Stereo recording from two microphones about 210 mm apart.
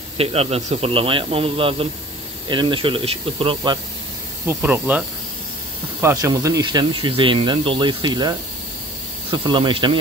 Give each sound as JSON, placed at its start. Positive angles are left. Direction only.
{"t": 0.2, "sound": "speech", "side_deg": -30}
{"t": 4.5, "sound": "speech", "side_deg": -10}